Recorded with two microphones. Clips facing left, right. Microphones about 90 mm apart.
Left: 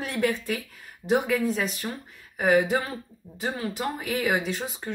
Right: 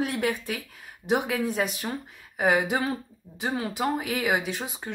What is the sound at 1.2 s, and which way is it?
Speech, 60° right (ahead or behind).